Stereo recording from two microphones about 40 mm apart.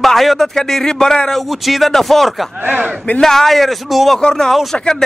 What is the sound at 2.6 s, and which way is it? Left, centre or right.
Speech, right.